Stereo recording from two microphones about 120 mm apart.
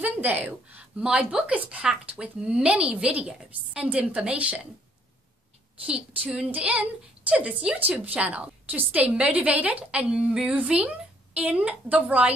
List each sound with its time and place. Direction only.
0.0 s a woman's voice: 15° right (ahead or behind)
5.9 s a woman's voice: 10° right (ahead or behind)